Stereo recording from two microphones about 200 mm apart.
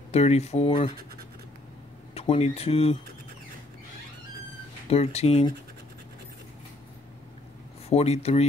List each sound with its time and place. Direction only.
0.1 s speech: 30° left (ahead or behind)
2.1 s speech: 30° left (ahead or behind)
4.8 s speech: 30° left (ahead or behind)
7.9 s speech: 30° left (ahead or behind)